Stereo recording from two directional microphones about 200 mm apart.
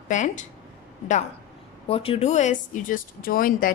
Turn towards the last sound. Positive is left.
turn(degrees=45)  # may be behind; listen again after turning